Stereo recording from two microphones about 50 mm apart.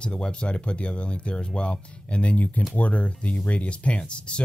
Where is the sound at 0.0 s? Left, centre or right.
Centre.